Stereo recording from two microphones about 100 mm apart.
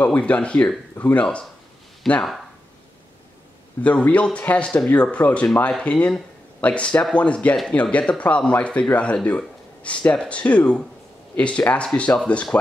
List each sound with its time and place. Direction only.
0.0 s speech: 15° left (ahead or behind)
3.8 s speech: 15° left (ahead or behind)